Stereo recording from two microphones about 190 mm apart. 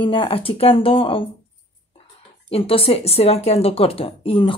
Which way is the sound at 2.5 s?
30° left (ahead or behind).